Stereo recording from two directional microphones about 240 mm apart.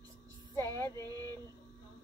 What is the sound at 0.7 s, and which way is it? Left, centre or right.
Child singing, centre.